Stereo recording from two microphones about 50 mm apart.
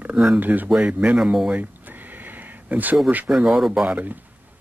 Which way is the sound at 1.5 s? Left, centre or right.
Right.